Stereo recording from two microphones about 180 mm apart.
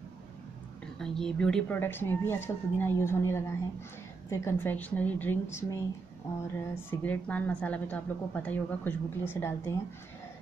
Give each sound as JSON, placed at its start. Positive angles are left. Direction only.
{"t": 0.9, "sound": "a woman's voice", "side_deg": 0}